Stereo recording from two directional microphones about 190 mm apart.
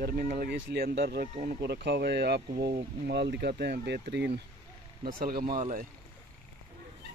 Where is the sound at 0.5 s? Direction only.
65° right (ahead or behind).